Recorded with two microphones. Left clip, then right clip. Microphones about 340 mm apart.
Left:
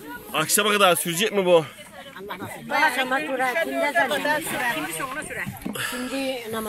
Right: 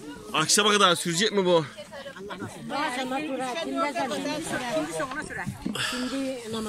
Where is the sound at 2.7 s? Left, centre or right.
Left.